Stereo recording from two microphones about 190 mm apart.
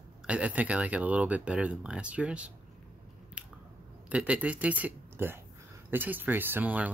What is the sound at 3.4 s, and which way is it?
Squish, 5° right (ahead or behind).